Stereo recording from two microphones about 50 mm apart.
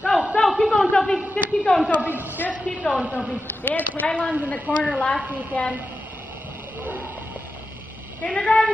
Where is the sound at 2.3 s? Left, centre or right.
Left.